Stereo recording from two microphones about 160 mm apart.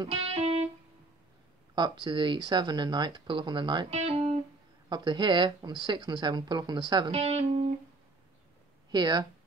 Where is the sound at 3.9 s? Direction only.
40° right (ahead or behind).